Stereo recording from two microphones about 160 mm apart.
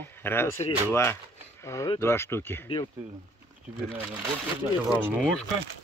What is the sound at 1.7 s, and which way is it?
Speech, 15° left (ahead or behind).